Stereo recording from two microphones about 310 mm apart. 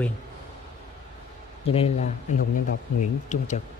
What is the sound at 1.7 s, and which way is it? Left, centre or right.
Speech, left.